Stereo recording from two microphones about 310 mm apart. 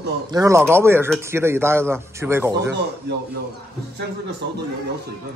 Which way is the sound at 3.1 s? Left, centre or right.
Right.